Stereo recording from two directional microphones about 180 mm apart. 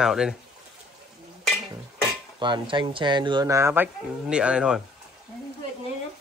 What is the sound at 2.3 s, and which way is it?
A man's voice, 25° right (ahead or behind).